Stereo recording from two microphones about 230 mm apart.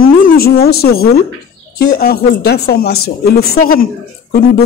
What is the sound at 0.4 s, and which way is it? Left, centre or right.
Speech, left.